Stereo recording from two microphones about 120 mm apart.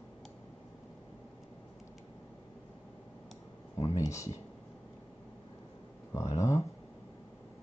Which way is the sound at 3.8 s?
25° left (ahead or behind).